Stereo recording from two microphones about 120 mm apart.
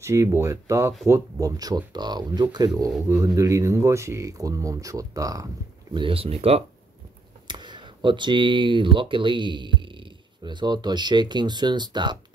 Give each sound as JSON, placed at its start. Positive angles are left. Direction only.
{"t": 0.0, "sound": "speech", "side_deg": -20}
{"t": 5.9, "sound": "speech", "side_deg": -50}
{"t": 7.4, "sound": "speech", "side_deg": -40}